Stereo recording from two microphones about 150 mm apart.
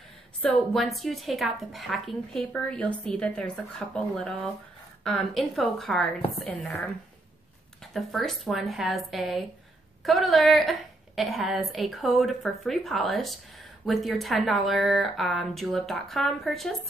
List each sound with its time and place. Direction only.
0.4 s speech: centre (ahead or behind)
7.9 s speech: centre (ahead or behind)